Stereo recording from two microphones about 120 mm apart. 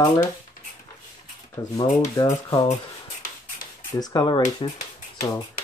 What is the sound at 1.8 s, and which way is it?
Speech, 30° left (ahead or behind).